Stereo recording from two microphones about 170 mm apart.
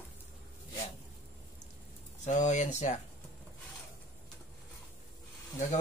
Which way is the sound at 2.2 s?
45° left (ahead or behind).